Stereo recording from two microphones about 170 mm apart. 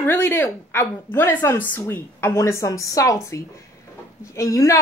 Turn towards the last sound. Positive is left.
turn(degrees=20)  # may be behind; listen again after turning